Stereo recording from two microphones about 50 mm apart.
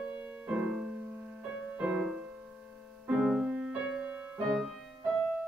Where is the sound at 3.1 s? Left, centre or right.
Centre.